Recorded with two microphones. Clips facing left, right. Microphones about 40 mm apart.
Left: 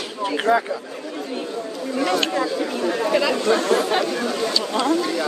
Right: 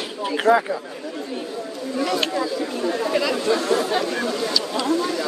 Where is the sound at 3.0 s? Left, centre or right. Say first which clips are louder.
Left 3 dB; left.